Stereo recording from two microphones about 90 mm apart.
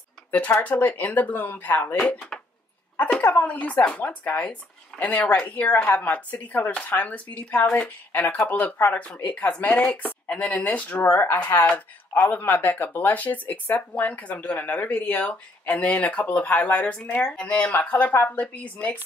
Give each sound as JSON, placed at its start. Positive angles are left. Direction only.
{"t": 0.3, "sound": "speech", "side_deg": 20}
{"t": 2.0, "sound": "speech", "side_deg": 10}
{"t": 11.1, "sound": "speech", "side_deg": 25}